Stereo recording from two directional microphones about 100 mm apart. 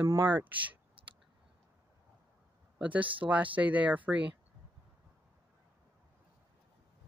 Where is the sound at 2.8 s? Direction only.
15° right (ahead or behind).